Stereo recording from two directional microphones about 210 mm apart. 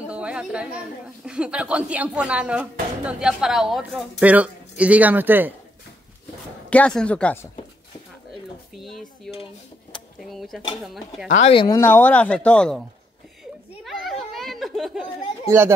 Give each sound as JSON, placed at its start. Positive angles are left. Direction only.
{"t": 0.1, "sound": "a woman's voice", "side_deg": -5}
{"t": 6.7, "sound": "a woman's voice", "side_deg": 5}
{"t": 8.7, "sound": "speech", "side_deg": 0}
{"t": 10.3, "sound": "a woman's voice", "side_deg": 0}
{"t": 11.3, "sound": "speech", "side_deg": 30}
{"t": 13.8, "sound": "a sound", "side_deg": 0}